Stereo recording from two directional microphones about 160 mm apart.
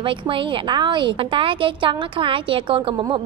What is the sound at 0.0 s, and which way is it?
A woman's voice, 30° right (ahead or behind).